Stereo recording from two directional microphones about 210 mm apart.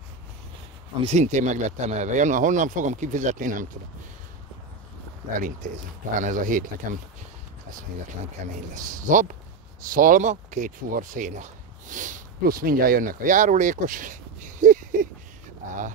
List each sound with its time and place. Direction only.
1.0 s speech: 35° right (ahead or behind)
5.6 s speech: 40° right (ahead or behind)
8.5 s speech: 40° right (ahead or behind)